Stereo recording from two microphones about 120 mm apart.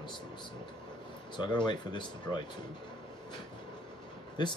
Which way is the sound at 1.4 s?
40° left (ahead or behind).